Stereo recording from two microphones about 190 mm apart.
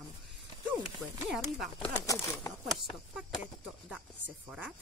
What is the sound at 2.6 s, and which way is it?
Speech, centre (ahead or behind).